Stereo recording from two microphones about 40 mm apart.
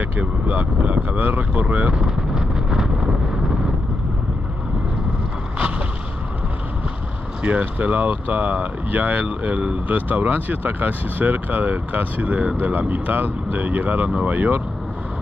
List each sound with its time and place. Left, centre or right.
0.6 s speech: right
2.0 s vehicle: centre
7.4 s speech: right
9.2 s speech: right